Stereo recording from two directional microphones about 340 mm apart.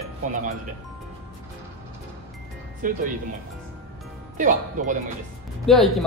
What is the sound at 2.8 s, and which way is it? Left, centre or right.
Speech, right.